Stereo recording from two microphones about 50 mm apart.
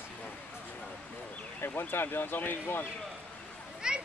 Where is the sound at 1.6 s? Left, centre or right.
Left.